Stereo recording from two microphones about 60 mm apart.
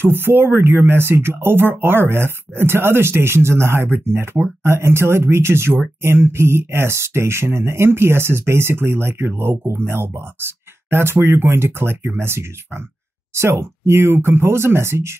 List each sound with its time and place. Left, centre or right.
0.0 s speech: right